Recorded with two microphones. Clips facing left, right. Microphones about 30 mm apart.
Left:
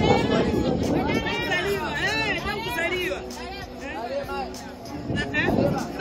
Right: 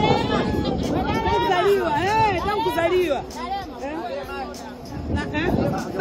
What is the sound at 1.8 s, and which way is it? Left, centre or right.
Speech, left.